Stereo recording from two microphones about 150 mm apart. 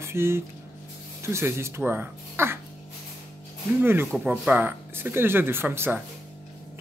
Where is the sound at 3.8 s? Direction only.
15° right (ahead or behind).